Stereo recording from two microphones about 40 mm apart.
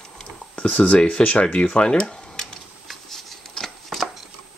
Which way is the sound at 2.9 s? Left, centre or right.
Centre.